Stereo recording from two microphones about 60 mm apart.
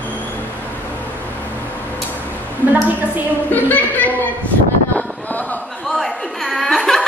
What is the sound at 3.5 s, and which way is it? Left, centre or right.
Speech, left.